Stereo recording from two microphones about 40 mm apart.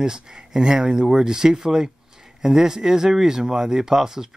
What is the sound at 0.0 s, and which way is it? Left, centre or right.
Speech, centre.